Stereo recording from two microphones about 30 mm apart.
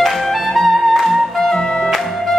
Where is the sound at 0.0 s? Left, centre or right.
Centre.